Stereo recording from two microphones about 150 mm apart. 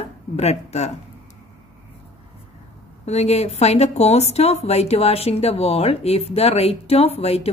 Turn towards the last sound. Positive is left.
turn(degrees=45)  # may be behind; listen again after turning